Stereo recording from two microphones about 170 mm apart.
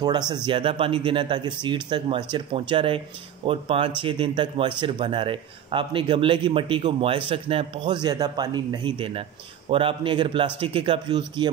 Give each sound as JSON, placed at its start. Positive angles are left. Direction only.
{"t": 0.0, "sound": "speech", "side_deg": -25}